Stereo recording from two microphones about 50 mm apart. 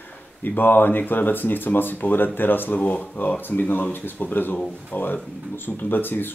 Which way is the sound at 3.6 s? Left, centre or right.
Left.